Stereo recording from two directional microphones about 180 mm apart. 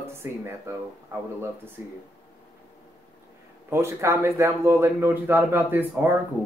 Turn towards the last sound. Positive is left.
turn(degrees=-10)  # may be behind; listen again after turning